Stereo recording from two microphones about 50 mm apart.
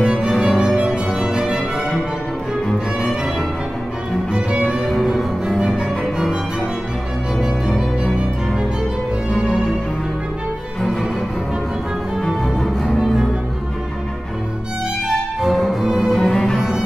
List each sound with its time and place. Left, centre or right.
0.0 s music: centre
4.3 s music: right
5.0 s cello: centre
5.8 s music: centre
12.8 s cello: centre
15.4 s music: centre
15.8 s music: centre
16.1 s music: centre
16.5 s music: centre